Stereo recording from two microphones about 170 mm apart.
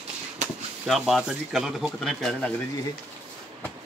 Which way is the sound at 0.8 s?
Centre (ahead or behind).